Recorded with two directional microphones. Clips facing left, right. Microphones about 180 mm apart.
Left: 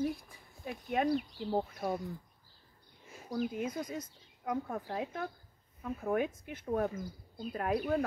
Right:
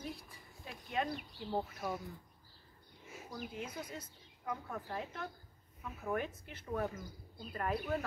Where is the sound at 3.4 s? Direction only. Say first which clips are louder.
Left 10 dB; 50° left (ahead or behind).